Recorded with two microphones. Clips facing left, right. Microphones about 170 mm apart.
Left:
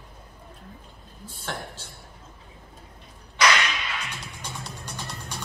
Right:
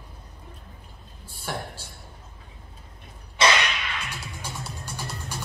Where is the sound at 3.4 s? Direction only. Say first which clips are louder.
Even; 25° right (ahead or behind).